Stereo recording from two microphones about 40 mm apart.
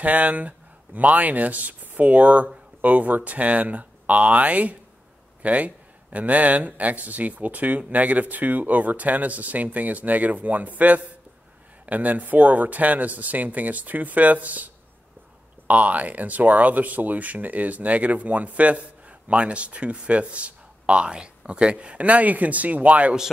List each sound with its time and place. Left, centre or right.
0.0 s speech: right